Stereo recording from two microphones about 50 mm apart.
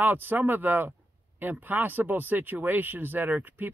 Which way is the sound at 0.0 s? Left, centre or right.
Right.